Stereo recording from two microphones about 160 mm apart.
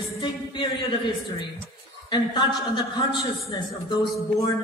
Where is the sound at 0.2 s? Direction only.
30° left (ahead or behind).